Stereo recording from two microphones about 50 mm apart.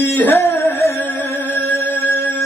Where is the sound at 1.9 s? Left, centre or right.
Left.